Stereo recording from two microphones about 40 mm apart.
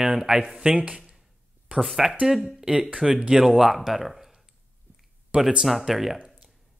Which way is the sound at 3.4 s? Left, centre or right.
Centre.